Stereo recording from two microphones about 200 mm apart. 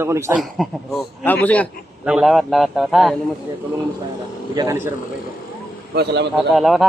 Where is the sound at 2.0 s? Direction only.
Centre (ahead or behind).